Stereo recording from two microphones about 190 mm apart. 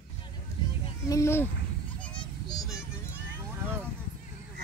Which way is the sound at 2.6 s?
15° left (ahead or behind).